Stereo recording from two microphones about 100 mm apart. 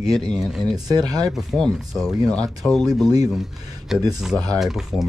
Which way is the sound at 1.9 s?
5° right (ahead or behind).